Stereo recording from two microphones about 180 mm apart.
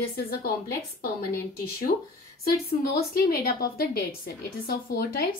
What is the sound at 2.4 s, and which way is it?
A woman's voice, 60° left (ahead or behind).